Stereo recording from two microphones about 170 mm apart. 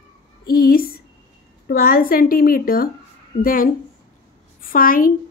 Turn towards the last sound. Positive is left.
turn(degrees=55)  # may be behind; listen again after turning